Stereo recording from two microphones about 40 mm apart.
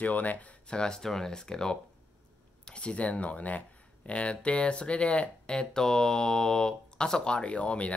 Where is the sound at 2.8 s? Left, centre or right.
Left.